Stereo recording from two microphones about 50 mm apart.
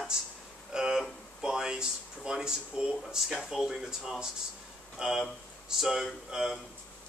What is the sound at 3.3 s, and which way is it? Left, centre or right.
Speech, centre.